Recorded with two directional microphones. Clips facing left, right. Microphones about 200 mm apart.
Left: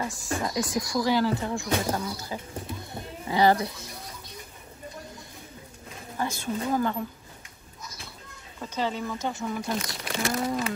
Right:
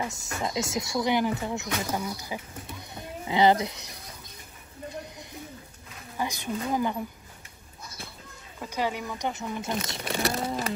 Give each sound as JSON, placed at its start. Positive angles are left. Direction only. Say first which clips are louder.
{"t": 0.0, "sound": "speech", "louder": "left 2 dB", "side_deg": -20}
{"t": 6.1, "sound": "speech", "louder": "left 1 dB", "side_deg": -15}
{"t": 8.5, "sound": "speech", "louder": "even", "side_deg": -10}